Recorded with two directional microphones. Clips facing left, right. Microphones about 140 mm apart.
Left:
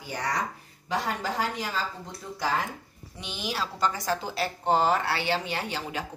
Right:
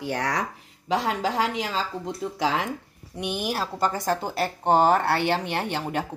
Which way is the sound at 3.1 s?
60° right (ahead or behind).